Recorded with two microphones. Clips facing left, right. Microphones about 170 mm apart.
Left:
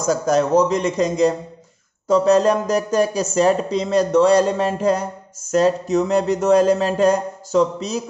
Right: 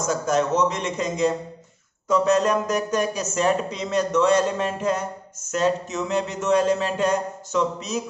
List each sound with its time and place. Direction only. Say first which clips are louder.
0.0 s speech: left 4 dB; 35° left (ahead or behind)